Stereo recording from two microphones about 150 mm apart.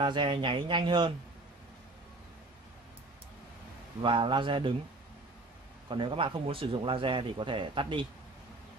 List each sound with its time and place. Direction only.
0.0 s speech: 30° right (ahead or behind)
4.0 s speech: 35° right (ahead or behind)
5.9 s speech: 35° right (ahead or behind)